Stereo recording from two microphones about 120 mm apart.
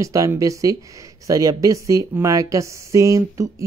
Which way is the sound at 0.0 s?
25° right (ahead or behind).